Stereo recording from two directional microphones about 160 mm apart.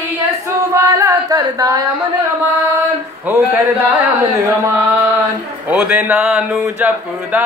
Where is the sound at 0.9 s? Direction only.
20° right (ahead or behind).